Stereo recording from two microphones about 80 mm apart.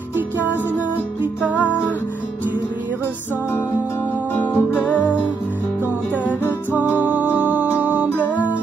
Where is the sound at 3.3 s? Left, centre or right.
Left.